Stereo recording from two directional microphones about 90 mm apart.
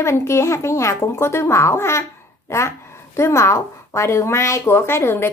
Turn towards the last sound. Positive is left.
turn(degrees=30)  # may be behind; listen again after turning